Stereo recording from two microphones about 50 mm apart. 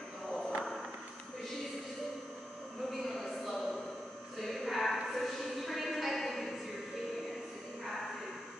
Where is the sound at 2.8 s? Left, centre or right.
Centre.